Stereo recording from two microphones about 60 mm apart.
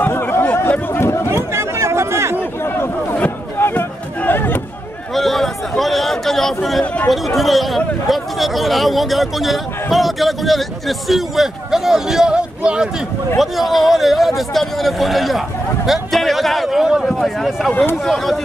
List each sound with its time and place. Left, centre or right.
0.1 s chatter: left
0.9 s chatter: left
1.3 s chatter: right
2.6 s a sound: left
5.1 s a sound: centre
7.1 s speech: centre
13.4 s speech: centre